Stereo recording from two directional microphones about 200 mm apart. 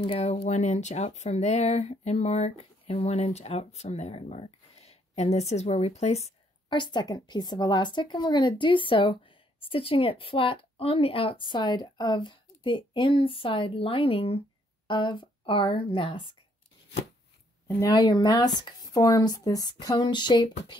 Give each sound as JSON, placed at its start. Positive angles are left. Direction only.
{"t": 0.0, "sound": "speech", "side_deg": 30}
{"t": 17.6, "sound": "speech", "side_deg": 20}